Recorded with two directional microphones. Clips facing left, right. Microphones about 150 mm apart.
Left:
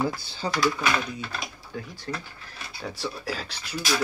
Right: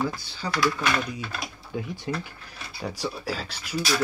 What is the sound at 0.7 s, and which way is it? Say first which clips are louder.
Speech: even; 5° left (ahead or behind).